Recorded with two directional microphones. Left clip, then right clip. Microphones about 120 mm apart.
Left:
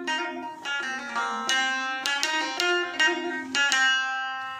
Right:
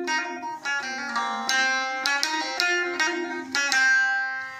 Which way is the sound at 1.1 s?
15° left (ahead or behind).